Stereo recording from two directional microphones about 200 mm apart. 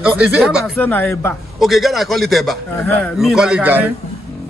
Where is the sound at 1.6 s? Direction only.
Centre (ahead or behind).